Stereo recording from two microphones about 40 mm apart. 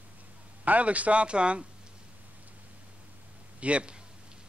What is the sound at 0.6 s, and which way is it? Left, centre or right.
A man's voice, right.